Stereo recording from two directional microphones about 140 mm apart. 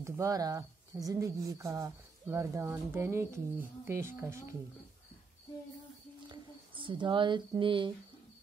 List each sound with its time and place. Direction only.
0.0 s speech: 25° right (ahead or behind)
6.2 s speech: 35° right (ahead or behind)